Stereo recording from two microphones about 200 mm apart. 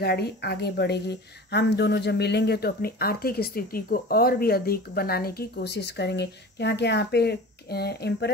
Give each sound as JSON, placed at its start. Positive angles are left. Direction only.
{"t": 0.0, "sound": "speech", "side_deg": 55}